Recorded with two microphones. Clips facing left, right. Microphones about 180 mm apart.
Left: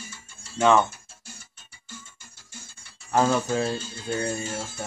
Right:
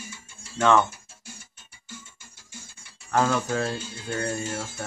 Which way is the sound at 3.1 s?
20° left (ahead or behind).